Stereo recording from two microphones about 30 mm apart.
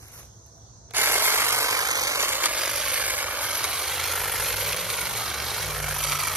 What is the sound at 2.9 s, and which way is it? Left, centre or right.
Vehicle, right.